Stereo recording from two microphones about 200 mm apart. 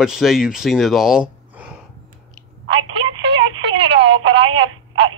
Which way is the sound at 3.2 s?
60° right (ahead or behind).